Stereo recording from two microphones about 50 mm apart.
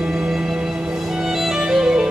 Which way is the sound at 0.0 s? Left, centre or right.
Centre.